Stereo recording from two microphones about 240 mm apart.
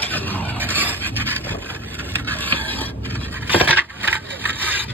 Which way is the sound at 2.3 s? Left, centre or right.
Centre.